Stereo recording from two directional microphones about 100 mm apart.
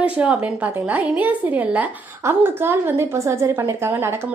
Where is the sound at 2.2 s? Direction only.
25° right (ahead or behind).